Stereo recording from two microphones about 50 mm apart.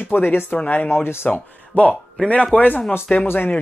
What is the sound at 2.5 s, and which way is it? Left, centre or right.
Speech, left.